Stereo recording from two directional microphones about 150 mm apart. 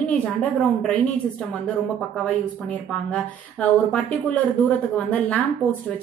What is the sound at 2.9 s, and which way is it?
Speech, 5° left (ahead or behind).